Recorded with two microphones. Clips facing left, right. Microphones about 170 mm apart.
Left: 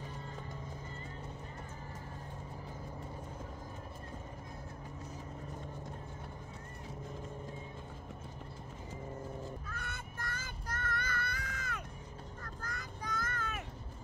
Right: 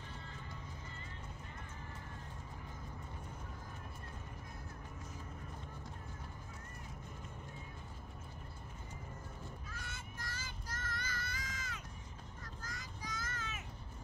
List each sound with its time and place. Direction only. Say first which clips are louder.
9.7 s child singing: left 5 dB; 60° left (ahead or behind)
12.4 s vehicle: left 4 dB; 60° left (ahead or behind)